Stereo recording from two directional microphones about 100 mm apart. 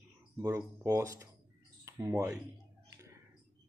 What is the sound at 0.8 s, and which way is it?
Speech, 35° right (ahead or behind).